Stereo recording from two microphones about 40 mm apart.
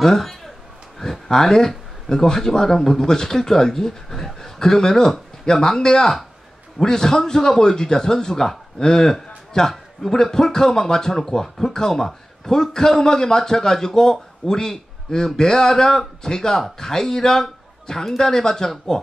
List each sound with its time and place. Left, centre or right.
0.0 s a man's voice: centre